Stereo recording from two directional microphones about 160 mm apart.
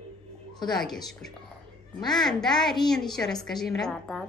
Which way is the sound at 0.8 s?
Centre (ahead or behind).